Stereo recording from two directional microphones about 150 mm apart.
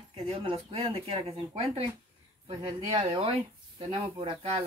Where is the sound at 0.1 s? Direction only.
35° right (ahead or behind).